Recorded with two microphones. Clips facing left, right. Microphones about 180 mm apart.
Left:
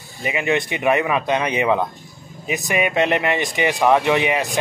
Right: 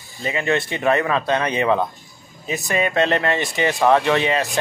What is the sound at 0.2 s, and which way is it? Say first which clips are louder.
A man's voice: even; 15° left (ahead or behind).